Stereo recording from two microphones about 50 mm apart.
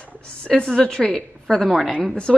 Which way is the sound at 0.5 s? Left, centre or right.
Centre.